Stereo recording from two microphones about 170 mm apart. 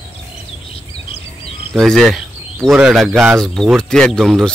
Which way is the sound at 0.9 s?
35° left (ahead or behind).